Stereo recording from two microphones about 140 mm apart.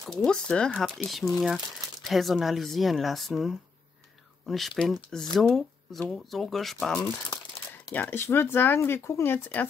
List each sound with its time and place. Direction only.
0.1 s speech: 5° left (ahead or behind)